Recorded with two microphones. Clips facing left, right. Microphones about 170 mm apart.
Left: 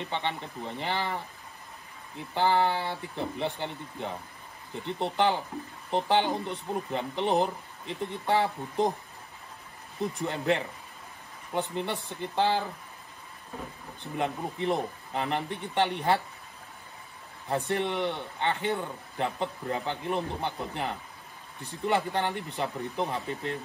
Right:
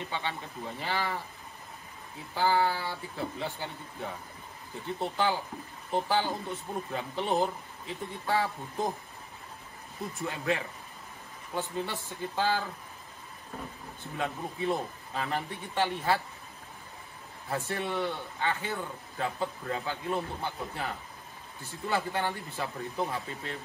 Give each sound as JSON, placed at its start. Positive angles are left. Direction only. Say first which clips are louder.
{"t": 0.0, "sound": "a man's voice", "louder": "left 3 dB", "side_deg": 20}
{"t": 2.3, "sound": "a man's voice", "louder": "left 2 dB", "side_deg": 25}
{"t": 10.1, "sound": "a man's voice", "louder": "left 2 dB", "side_deg": 25}
{"t": 14.1, "sound": "a man's voice", "louder": "left 3 dB", "side_deg": 20}
{"t": 17.5, "sound": "a man's voice", "louder": "left 4 dB", "side_deg": 20}